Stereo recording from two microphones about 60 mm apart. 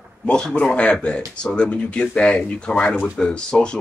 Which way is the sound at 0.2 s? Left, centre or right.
Centre.